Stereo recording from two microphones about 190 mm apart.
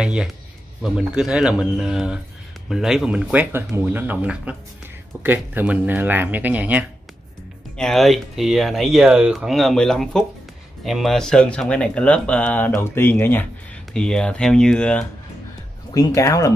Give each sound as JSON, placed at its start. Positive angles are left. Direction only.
{"t": 0.0, "sound": "a man's voice", "side_deg": -5}
{"t": 16.2, "sound": "speech", "side_deg": 15}